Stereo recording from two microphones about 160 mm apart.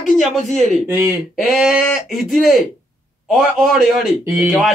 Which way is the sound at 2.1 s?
Centre (ahead or behind).